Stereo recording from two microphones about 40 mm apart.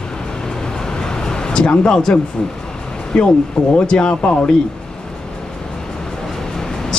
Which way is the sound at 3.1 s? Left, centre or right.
Left.